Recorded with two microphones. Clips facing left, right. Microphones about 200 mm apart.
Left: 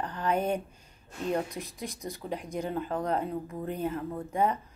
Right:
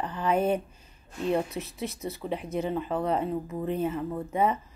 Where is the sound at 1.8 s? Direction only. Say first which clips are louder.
Right 5 dB; 5° right (ahead or behind).